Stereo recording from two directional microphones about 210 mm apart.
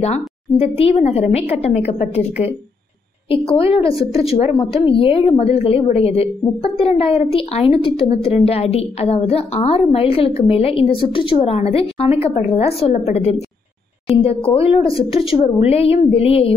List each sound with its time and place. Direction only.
0.0 s a woman's voice: 30° left (ahead or behind)